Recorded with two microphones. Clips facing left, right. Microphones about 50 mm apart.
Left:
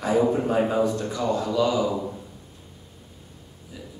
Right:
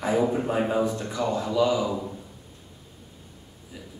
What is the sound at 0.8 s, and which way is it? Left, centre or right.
Speech, right.